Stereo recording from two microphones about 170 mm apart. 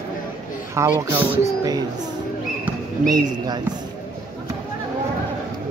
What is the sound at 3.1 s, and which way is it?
Speech, 25° right (ahead or behind).